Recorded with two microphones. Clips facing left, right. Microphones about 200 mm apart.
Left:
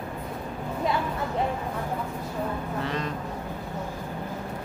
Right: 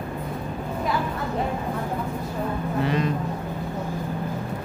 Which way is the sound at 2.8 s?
10° right (ahead or behind).